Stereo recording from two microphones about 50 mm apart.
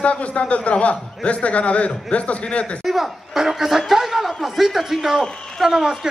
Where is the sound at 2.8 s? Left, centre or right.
Centre.